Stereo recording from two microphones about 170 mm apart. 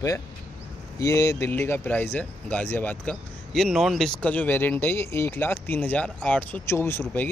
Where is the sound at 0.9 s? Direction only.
20° left (ahead or behind).